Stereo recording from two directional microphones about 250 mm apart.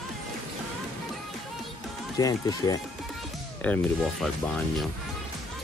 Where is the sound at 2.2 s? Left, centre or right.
Centre.